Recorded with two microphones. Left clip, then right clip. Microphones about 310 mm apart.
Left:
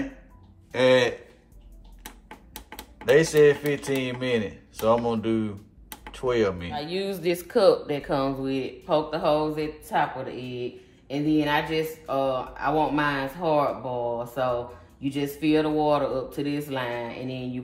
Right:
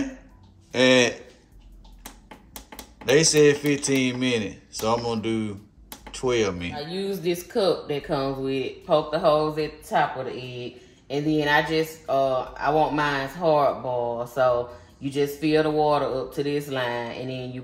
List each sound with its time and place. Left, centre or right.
0.7 s speech: centre
2.3 s speech: centre
6.7 s speech: left
7.0 s speech: centre